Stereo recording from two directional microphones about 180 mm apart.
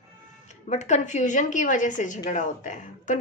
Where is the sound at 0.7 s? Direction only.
40° left (ahead or behind).